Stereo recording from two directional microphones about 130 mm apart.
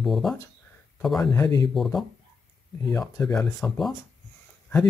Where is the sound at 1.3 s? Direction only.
25° left (ahead or behind).